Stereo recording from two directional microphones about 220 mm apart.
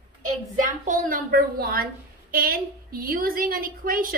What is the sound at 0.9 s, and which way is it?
A woman's voice, 40° right (ahead or behind).